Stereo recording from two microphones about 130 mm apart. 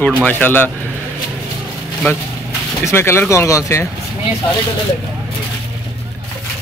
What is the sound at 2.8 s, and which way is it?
Speech, 20° left (ahead or behind).